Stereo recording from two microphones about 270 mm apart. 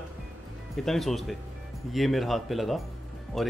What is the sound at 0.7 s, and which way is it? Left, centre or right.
Speech, centre.